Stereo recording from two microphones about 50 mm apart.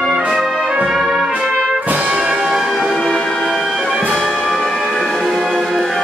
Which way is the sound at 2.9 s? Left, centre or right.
Centre.